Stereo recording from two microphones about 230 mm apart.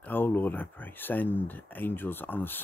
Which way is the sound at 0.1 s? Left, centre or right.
Centre.